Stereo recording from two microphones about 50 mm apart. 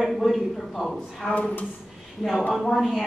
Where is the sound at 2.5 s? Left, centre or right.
Centre.